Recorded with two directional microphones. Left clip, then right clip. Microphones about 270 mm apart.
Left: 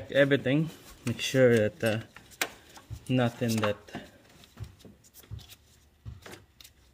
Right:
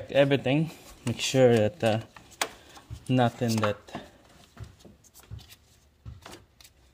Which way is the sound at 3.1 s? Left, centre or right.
Right.